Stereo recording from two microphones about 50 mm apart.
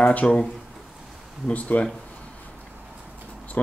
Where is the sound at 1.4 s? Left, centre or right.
Left.